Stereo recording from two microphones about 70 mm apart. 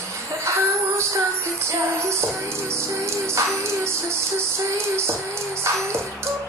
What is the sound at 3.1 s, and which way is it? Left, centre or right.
Music, right.